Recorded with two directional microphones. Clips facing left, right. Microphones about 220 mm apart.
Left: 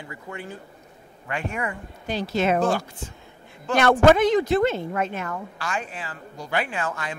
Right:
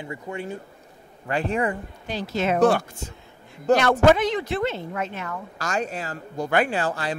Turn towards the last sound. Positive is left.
turn(degrees=-35)  # may be behind; listen again after turning